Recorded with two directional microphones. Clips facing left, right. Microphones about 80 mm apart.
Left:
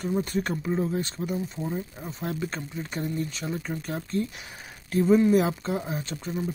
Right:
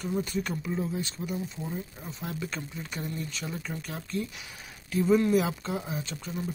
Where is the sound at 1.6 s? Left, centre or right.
Left.